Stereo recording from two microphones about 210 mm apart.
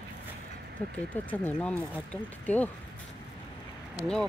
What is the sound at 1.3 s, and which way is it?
Speech, 5° left (ahead or behind).